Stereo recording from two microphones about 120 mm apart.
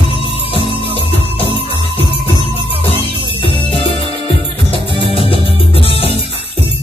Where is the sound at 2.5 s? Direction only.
50° right (ahead or behind).